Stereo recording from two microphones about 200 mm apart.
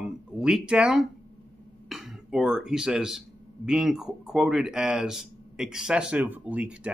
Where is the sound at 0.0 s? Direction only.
5° right (ahead or behind).